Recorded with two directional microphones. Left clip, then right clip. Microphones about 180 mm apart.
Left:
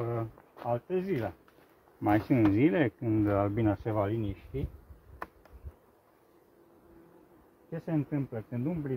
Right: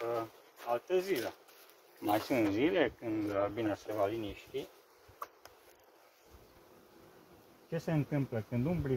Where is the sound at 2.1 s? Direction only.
20° right (ahead or behind).